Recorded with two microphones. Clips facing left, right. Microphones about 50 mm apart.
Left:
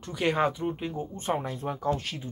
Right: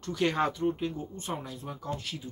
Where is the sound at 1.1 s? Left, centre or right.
Left.